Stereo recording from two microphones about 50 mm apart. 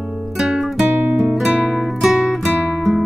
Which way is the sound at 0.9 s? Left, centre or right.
Right.